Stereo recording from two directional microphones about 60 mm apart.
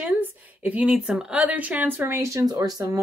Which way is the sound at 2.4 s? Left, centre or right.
Right.